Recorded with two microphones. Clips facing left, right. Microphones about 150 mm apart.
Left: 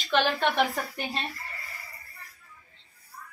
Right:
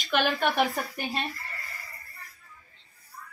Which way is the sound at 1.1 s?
20° left (ahead or behind).